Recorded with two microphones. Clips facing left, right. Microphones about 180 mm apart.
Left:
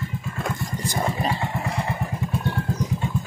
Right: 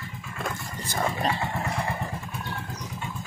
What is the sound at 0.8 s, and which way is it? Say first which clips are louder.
Vehicle: left 1 dB; 10° left (ahead or behind).